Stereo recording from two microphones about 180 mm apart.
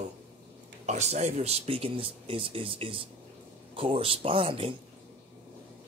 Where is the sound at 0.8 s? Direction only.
40° right (ahead or behind).